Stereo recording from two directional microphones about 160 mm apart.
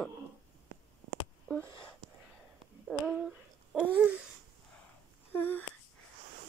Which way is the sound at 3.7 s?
10° right (ahead or behind).